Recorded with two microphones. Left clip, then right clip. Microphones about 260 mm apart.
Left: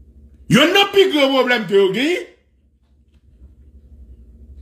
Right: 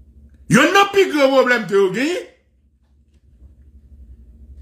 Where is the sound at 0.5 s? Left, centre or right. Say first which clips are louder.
Even; centre.